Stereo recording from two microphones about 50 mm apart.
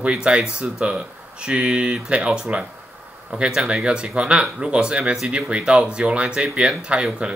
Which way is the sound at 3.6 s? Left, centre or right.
Centre.